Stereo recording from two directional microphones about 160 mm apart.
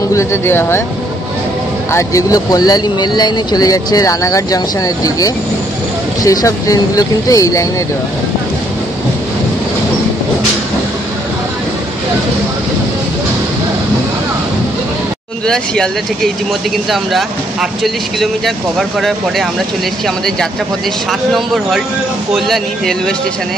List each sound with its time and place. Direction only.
0.1 s speech: 15° left (ahead or behind)
1.9 s speech: 20° left (ahead or behind)
15.4 s speech: 5° left (ahead or behind)
16.9 s speech: centre (ahead or behind)
22.3 s speech: centre (ahead or behind)